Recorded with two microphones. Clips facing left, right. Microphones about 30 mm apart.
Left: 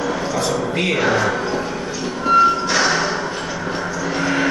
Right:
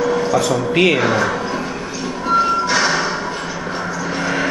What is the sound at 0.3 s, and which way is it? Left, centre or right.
Speech, right.